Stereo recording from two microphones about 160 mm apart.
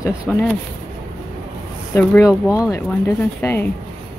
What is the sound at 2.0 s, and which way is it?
Speech, 15° left (ahead or behind).